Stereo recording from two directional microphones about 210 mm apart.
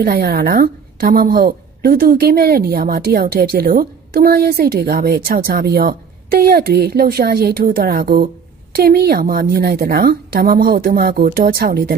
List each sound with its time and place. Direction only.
0.0 s a woman's voice: 45° right (ahead or behind)